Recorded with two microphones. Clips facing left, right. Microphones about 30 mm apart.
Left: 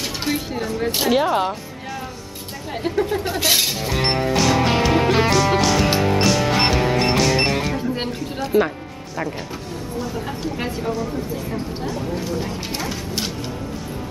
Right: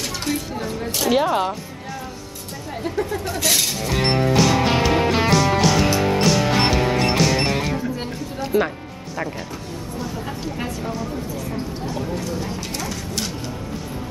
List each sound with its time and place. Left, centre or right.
0.2 s speech: centre
1.1 s speech: centre
3.1 s speech: left
4.2 s music: centre
8.4 s speech: centre
10.8 s speech: centre
12.2 s speech: centre